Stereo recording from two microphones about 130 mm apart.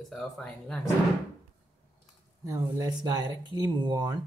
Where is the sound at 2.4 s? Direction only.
25° right (ahead or behind).